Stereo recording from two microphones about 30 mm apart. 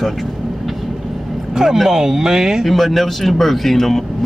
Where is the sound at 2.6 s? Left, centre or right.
Centre.